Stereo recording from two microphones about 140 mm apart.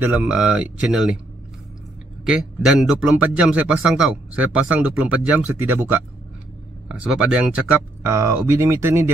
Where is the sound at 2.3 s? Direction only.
5° right (ahead or behind).